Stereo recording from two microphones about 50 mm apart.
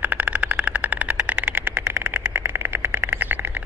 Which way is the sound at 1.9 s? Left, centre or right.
Right.